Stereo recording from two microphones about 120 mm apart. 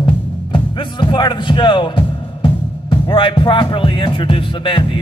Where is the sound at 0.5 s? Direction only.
40° left (ahead or behind).